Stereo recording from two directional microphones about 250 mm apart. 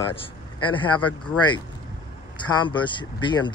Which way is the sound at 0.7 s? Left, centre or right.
Centre.